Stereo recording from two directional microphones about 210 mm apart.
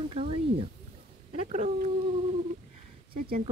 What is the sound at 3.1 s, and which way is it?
Speech, 45° right (ahead or behind).